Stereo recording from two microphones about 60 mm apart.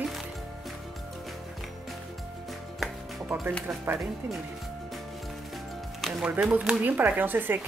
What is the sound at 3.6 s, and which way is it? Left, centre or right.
Speech, right.